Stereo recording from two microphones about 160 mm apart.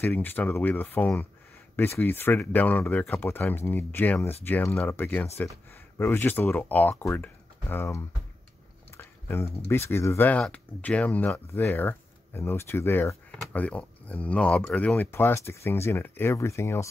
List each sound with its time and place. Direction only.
0.0 s speech: 10° left (ahead or behind)
8.9 s a sound: 15° left (ahead or behind)
9.7 s speech: 15° left (ahead or behind)